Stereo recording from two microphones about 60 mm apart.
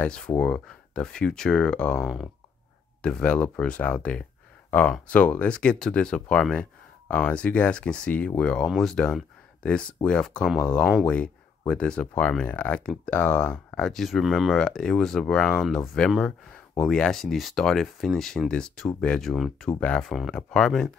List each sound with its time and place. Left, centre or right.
0.0 s speech: centre
3.0 s speech: centre
8.6 s speech: centre
8.9 s speech: centre
13.7 s speech: centre
15.7 s speech: centre
19.3 s speech: centre